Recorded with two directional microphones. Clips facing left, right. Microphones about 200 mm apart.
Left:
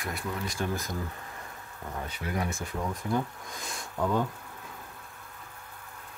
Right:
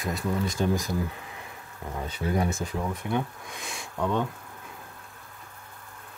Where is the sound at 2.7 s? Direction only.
5° right (ahead or behind).